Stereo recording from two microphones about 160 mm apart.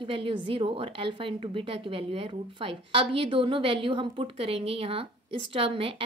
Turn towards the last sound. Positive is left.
turn(degrees=-35)  # may be behind; listen again after turning